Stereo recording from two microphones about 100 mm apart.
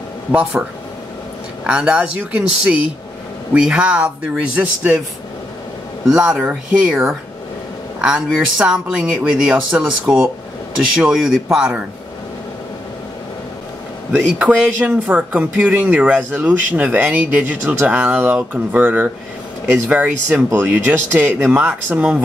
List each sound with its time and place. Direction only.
0.3 s speech: 10° right (ahead or behind)
1.7 s speech: 10° right (ahead or behind)
6.0 s speech: 10° right (ahead or behind)
8.5 s speech: 10° right (ahead or behind)
11.0 s speech: 5° right (ahead or behind)
14.1 s speech: 15° right (ahead or behind)